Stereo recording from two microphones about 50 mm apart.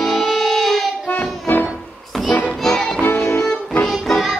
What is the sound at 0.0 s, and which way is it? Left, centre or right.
Music, centre.